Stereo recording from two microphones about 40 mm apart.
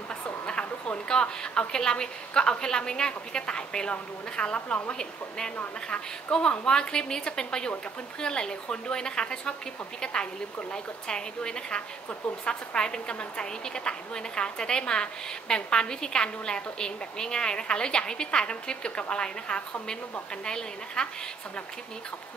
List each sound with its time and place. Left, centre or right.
0.1 s a woman's voice: left
6.3 s a woman's voice: left
10.7 s a woman's voice: left